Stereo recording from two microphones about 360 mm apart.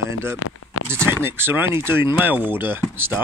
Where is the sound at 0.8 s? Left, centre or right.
Centre.